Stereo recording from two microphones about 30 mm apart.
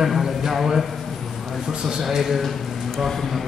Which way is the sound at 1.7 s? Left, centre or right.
Right.